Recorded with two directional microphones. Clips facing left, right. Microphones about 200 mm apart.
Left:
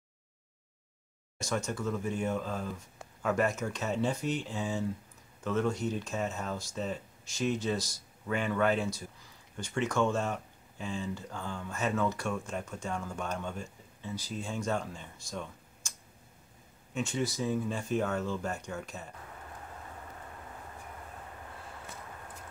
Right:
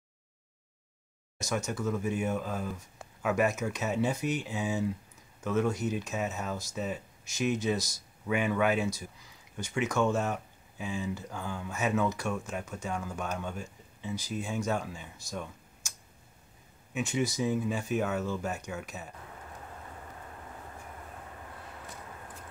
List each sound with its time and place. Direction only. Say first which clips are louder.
1.7 s speech: right 2 dB; 5° right (ahead or behind)
16.9 s speech: right 2 dB; 5° right (ahead or behind)